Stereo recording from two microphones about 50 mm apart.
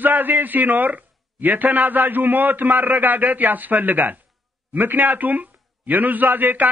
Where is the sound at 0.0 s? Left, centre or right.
Right.